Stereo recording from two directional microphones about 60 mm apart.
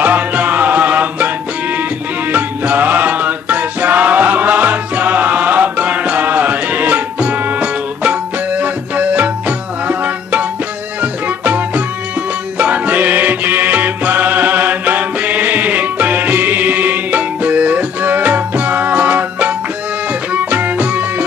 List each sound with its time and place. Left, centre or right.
0.0 s music: right
2.3 s music: right